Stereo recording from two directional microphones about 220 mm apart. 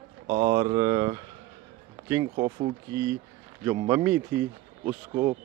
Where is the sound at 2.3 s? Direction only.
30° right (ahead or behind).